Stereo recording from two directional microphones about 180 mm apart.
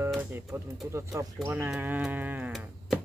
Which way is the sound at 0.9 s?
15° right (ahead or behind).